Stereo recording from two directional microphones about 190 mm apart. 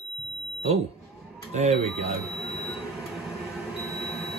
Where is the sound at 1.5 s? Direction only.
35° right (ahead or behind).